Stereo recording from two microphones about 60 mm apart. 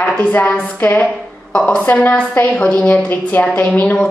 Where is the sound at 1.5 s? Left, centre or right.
Left.